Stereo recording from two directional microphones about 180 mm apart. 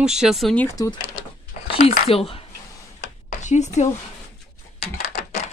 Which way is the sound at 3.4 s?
40° left (ahead or behind).